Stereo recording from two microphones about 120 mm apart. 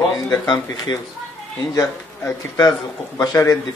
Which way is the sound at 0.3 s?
35° left (ahead or behind).